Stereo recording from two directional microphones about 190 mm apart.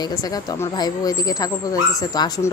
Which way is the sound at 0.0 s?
20° left (ahead or behind).